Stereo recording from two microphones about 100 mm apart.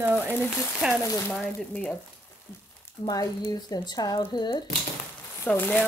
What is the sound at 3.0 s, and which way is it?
Speech, 40° left (ahead or behind).